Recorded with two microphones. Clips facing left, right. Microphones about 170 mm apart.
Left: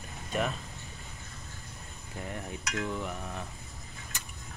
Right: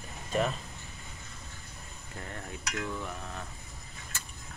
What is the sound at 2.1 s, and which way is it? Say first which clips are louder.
Cutlery: left 3 dB; 15° left (ahead or behind).